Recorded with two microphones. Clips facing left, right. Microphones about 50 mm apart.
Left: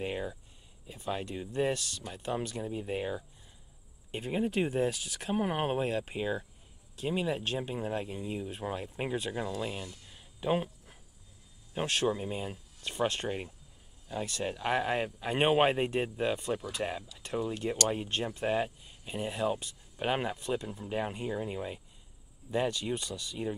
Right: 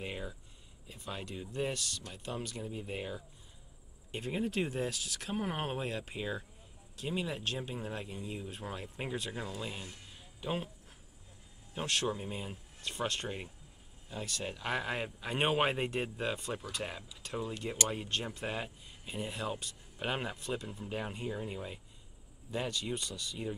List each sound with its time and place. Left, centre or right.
0.0 s speech: centre
14.5 s speech: centre
20.6 s speech: centre